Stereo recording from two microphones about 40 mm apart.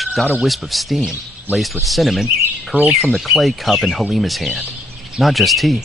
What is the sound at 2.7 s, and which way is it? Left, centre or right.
Speech, right.